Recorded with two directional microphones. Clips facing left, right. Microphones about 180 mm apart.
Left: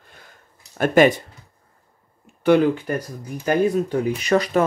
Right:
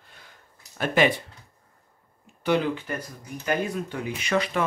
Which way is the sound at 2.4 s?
50° left (ahead or behind).